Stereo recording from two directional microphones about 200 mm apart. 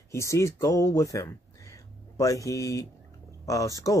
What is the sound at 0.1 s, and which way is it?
Speech, 15° left (ahead or behind).